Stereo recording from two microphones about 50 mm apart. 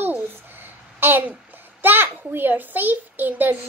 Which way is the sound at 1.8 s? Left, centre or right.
Right.